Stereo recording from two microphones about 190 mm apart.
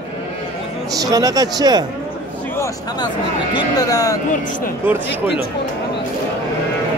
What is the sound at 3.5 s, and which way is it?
Speech, 20° left (ahead or behind).